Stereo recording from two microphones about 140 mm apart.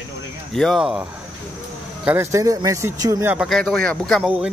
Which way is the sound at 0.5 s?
Centre (ahead or behind).